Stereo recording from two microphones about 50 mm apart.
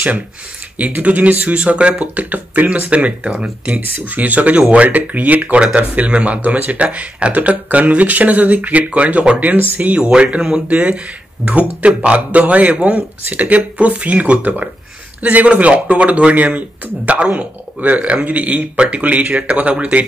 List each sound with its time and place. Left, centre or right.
0.7 s speech: right
1.6 s speech: right